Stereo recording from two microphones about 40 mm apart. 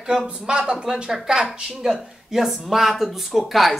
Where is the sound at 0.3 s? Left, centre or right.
Centre.